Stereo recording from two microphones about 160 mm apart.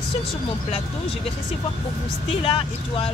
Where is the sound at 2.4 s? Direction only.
35° left (ahead or behind).